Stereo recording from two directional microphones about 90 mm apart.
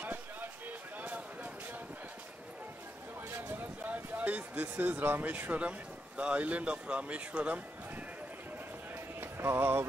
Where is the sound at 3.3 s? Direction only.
25° right (ahead or behind).